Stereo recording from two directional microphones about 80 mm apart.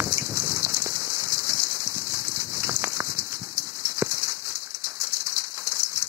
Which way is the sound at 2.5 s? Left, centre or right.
Right.